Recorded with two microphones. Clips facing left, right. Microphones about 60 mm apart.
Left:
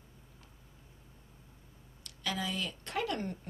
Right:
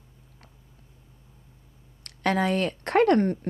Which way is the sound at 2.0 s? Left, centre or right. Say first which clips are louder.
Right 12 dB; right.